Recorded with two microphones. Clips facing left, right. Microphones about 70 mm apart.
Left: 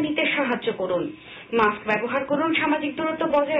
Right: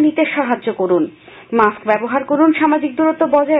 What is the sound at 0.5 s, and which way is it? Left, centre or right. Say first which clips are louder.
Speech: right 7 dB; right.